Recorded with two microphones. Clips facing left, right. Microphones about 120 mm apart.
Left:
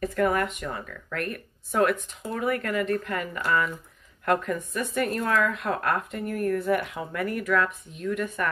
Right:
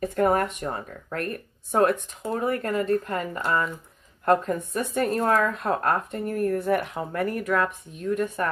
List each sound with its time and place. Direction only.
0.0 s a woman's voice: 30° right (ahead or behind)